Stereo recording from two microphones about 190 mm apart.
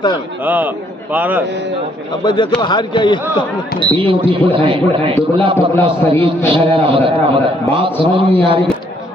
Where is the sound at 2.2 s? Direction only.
25° left (ahead or behind).